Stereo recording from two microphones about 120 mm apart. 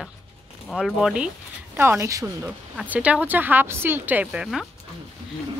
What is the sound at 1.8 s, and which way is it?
Speech, 20° right (ahead or behind).